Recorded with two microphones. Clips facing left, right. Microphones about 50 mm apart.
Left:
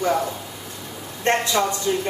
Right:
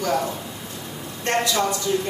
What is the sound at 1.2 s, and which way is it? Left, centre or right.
Speech, left.